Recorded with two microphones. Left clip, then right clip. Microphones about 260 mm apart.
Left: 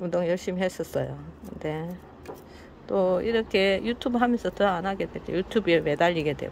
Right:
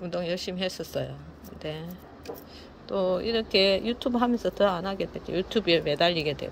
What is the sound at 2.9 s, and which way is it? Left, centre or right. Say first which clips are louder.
Speech: left 3 dB; centre.